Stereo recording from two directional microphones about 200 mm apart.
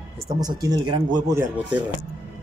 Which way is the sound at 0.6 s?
20° right (ahead or behind).